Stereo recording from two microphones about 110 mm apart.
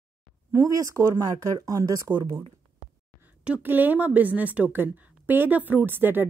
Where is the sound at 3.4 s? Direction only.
15° right (ahead or behind).